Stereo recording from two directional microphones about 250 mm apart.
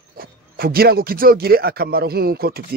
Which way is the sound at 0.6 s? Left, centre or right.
Right.